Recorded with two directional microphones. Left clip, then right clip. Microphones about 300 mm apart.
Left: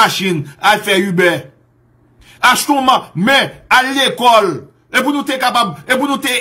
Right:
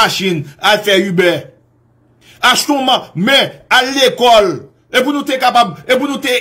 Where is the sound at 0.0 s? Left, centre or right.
Centre.